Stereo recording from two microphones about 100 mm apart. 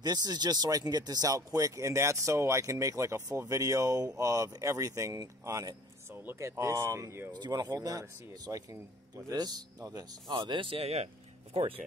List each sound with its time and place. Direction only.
0.0 s speech: 45° right (ahead or behind)
7.3 s speech: 45° right (ahead or behind)
10.3 s speech: 55° right (ahead or behind); by 11.1 s 85° right
11.5 s speech: 65° right (ahead or behind)